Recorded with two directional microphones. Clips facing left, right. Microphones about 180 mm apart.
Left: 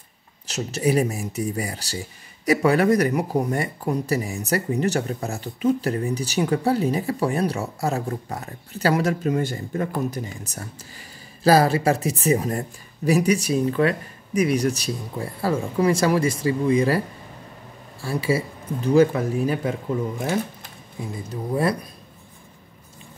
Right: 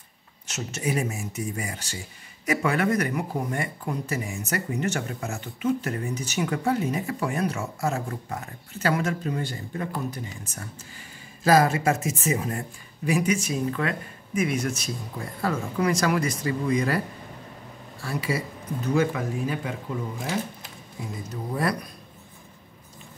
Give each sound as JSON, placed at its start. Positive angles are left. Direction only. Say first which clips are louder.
{"t": 0.5, "sound": "speech", "louder": "left 7 dB", "side_deg": 35}
{"t": 18.0, "sound": "speech", "louder": "left 5 dB", "side_deg": 30}
{"t": 21.3, "sound": "speech", "louder": "left 4 dB", "side_deg": 25}